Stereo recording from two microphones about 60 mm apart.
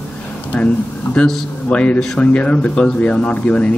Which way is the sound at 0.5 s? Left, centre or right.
Left.